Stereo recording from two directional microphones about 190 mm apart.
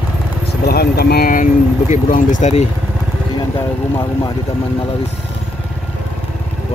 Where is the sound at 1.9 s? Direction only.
40° left (ahead or behind).